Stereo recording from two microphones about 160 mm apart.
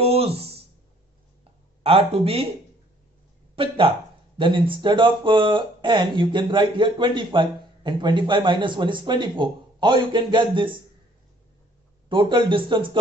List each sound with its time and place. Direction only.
0.0 s a sound: 35° right (ahead or behind)
1.8 s speech: 40° right (ahead or behind)
3.5 s speech: 35° right (ahead or behind)
12.1 s speech: 30° right (ahead or behind)